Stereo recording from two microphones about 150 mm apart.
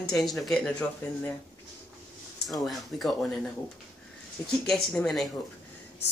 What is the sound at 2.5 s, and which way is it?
Speech, centre (ahead or behind).